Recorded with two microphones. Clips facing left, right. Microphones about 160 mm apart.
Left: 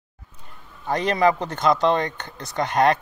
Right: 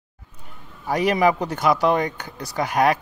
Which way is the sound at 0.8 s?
10° right (ahead or behind).